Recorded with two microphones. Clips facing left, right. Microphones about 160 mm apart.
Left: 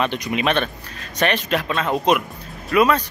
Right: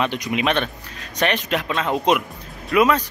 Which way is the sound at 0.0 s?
15° right (ahead or behind).